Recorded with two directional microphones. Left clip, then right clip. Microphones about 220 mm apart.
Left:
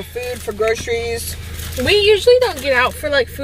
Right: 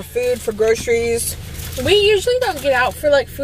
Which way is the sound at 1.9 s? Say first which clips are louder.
Left 3 dB; 20° left (ahead or behind).